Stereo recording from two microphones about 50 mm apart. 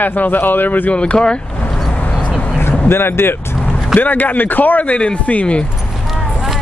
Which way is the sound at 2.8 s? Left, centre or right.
Left.